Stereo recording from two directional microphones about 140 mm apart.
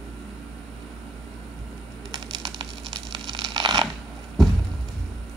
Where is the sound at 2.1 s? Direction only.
Centre (ahead or behind).